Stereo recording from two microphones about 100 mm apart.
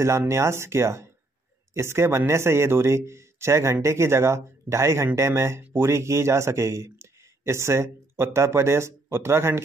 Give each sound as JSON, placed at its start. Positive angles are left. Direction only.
{"t": 0.3, "sound": "speech", "side_deg": -25}